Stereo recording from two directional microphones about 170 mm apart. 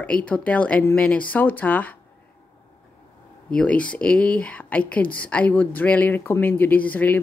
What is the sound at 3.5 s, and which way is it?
Speech, 5° left (ahead or behind).